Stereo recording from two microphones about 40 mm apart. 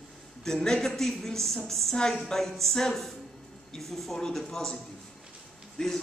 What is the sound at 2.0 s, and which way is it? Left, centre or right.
Speech, centre.